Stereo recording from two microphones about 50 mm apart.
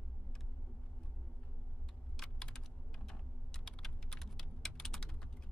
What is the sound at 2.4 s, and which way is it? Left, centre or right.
Typing, centre.